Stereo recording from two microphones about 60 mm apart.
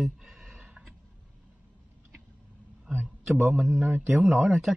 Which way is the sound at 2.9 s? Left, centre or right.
Right.